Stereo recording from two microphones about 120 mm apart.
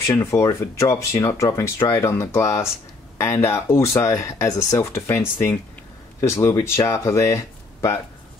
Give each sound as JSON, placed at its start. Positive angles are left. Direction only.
{"t": 0.1, "sound": "speech", "side_deg": 25}